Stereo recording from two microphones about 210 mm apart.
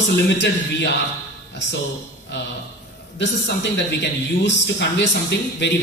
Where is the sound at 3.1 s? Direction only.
55° left (ahead or behind).